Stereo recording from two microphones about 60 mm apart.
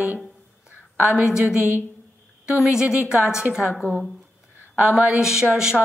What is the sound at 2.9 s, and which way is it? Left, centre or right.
A woman's voice, centre.